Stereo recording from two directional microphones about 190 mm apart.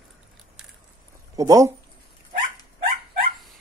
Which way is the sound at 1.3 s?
20° right (ahead or behind).